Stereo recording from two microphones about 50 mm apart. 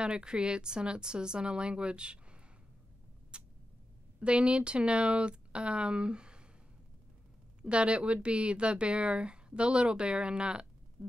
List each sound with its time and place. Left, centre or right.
0.0 s speech: centre
3.3 s tick-tock: centre
4.2 s speech: right
7.6 s speech: right